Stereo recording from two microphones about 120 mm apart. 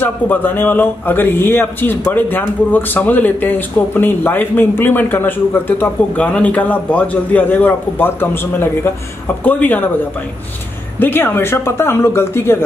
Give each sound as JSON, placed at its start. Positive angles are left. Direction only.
{"t": 0.0, "sound": "a man's voice", "side_deg": 15}
{"t": 11.0, "sound": "speech", "side_deg": 15}